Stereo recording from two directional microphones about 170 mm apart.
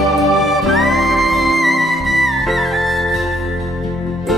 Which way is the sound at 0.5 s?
Centre (ahead or behind).